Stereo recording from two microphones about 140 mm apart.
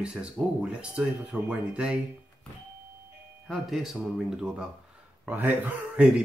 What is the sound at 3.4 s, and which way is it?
Speech, centre (ahead or behind).